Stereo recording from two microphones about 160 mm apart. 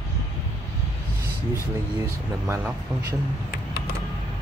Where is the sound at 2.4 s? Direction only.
15° right (ahead or behind).